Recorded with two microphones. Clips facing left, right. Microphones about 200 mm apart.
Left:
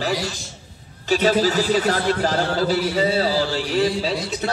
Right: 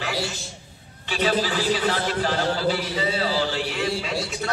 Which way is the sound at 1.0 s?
40° left (ahead or behind).